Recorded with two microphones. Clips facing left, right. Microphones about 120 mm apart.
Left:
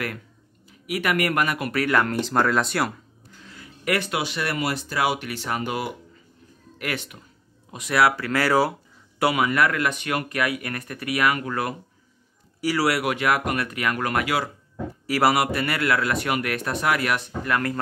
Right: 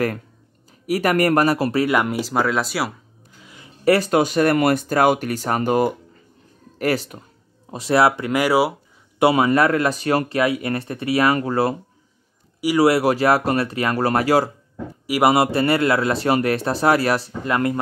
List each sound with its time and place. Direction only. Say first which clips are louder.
0.7 s speech: right 6 dB; 40° right (ahead or behind)
1.9 s speech: right 2 dB; 10° right (ahead or behind)
3.4 s a sound: left 1 dB; 20° right (ahead or behind)
3.8 s speech: right 9 dB; 35° right (ahead or behind); by 8.7 s 10° right (ahead or behind)
9.2 s speech: right 5 dB; 30° right (ahead or behind)
12.5 s a sound: right 6 dB; 15° right (ahead or behind)
12.8 s speech: right 8 dB; 30° right (ahead or behind)
15.0 s speech: right 3 dB; 15° right (ahead or behind)
15.3 s speech: right 6 dB; 30° right (ahead or behind)